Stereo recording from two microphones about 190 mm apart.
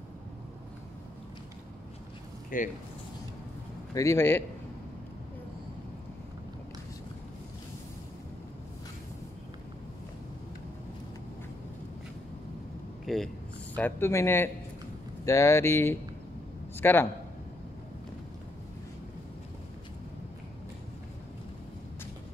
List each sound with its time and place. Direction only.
2.5 s speech: 45° left (ahead or behind)
3.9 s speech: 15° left (ahead or behind)
13.0 s a sound: centre (ahead or behind)
13.7 s a man's voice: 10° left (ahead or behind)